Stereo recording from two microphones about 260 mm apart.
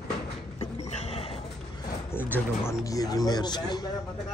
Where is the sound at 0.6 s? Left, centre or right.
Left.